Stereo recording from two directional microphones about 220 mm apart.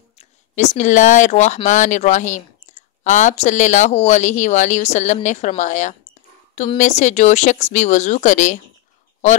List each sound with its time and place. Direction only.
0.2 s speech: 35° left (ahead or behind)